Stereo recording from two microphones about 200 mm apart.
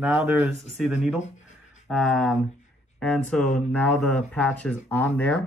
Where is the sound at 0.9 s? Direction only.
35° left (ahead or behind).